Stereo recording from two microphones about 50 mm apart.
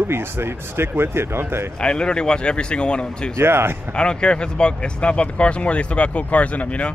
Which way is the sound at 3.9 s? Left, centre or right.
Centre.